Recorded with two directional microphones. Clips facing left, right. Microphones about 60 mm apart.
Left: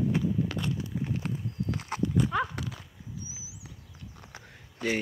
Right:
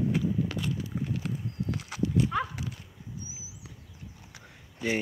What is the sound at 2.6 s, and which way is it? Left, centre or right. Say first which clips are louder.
Horse: left 1 dB; left.